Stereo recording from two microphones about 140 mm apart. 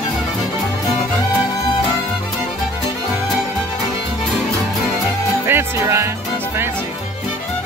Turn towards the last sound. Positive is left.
turn(degrees=-15)  # may be behind; listen again after turning